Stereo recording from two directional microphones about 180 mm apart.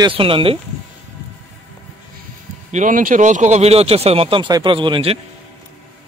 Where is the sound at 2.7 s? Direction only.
45° right (ahead or behind); by 5.2 s 30° right (ahead or behind).